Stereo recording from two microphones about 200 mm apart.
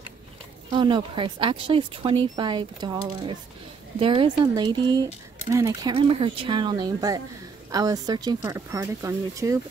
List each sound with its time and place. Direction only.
0.7 s speech: 25° right (ahead or behind)